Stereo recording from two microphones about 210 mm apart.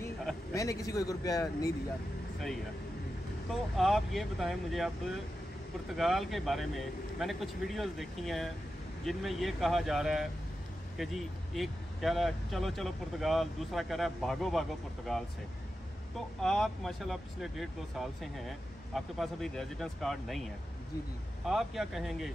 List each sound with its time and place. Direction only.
0.6 s a man's voice: 15° left (ahead or behind)
3.7 s speech: centre (ahead or behind)
21.5 s speech: centre (ahead or behind)